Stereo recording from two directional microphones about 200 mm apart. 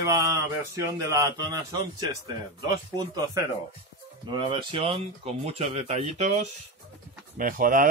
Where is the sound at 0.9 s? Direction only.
15° right (ahead or behind).